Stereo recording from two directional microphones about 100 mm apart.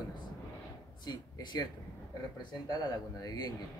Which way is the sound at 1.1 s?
45° left (ahead or behind).